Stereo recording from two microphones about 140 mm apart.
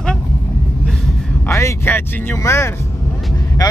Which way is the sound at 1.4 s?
20° left (ahead or behind).